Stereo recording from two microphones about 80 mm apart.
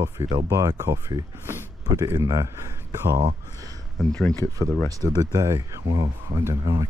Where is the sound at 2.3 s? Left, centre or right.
Right.